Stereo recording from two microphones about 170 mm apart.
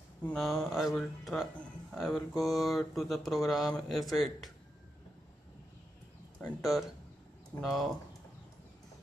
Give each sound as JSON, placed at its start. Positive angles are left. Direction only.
{"t": 0.2, "sound": "speech", "side_deg": 5}
{"t": 6.4, "sound": "speech", "side_deg": 5}
{"t": 7.6, "sound": "speech", "side_deg": 0}